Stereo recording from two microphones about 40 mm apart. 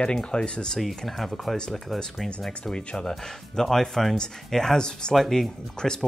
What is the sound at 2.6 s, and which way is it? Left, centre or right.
Speech, left.